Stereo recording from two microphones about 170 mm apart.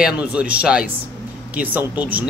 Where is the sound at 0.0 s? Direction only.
5° right (ahead or behind).